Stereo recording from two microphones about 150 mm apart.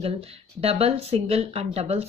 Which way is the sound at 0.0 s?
40° right (ahead or behind).